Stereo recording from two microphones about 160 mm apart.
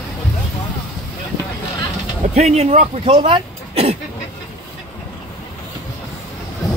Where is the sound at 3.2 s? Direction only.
30° right (ahead or behind).